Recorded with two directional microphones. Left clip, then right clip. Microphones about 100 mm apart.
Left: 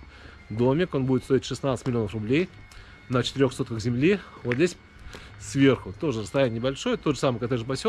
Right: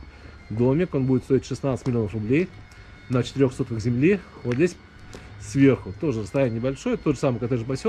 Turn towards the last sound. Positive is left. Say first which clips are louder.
# right 1 dB
turn(degrees=60)  # may be behind; listen again after turning